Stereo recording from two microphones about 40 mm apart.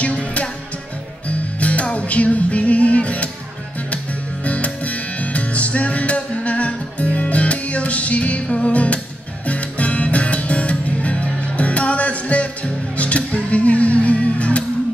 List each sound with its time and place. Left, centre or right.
0.0 s music: left
1.6 s music: left
4.5 s music: left